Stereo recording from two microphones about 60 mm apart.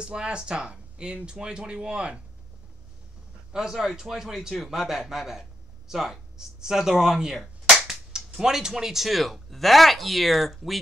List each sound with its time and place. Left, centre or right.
0.0 s speech: centre
3.5 s a man's voice: centre